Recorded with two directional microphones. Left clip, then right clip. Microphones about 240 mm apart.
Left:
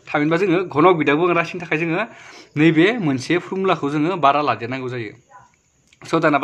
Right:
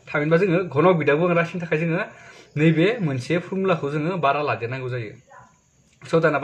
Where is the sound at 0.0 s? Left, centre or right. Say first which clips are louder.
Left 1 dB; left.